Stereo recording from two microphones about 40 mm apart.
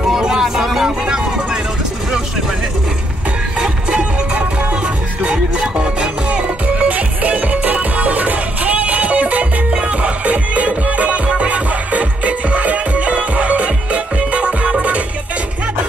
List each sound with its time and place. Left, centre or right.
0.2 s vehicle: centre
3.5 s music: right